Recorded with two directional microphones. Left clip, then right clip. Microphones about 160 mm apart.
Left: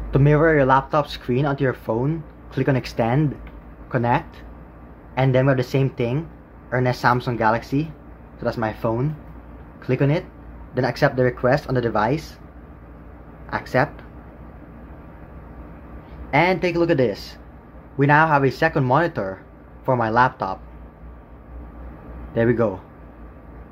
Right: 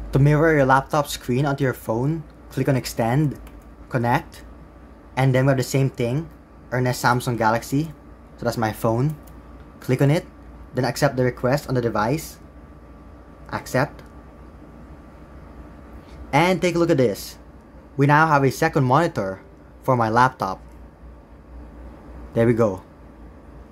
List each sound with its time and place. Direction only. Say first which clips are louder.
0.1 s speech: left 1 dB; 10° right (ahead or behind)
13.5 s speech: left 2 dB; 10° right (ahead or behind)
16.3 s speech: even; 20° right (ahead or behind)
22.3 s speech: right 1 dB; 20° right (ahead or behind)